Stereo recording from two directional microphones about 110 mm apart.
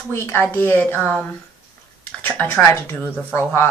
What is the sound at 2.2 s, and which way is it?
Speech, 15° left (ahead or behind).